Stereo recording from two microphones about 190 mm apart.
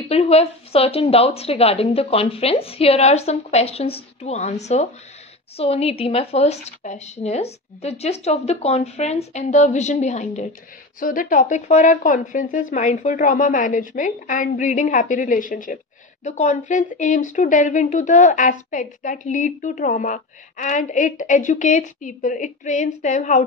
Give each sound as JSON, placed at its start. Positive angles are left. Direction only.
{"t": 0.1, "sound": "a woman's voice", "side_deg": 35}